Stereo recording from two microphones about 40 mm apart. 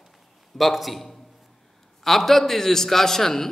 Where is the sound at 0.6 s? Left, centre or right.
Centre.